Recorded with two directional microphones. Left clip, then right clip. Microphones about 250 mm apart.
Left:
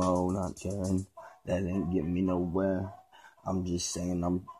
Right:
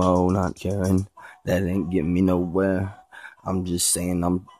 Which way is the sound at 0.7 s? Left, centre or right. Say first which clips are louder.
Right 9 dB; right.